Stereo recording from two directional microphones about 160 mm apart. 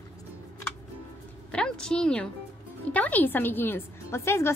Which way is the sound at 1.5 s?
5° left (ahead or behind).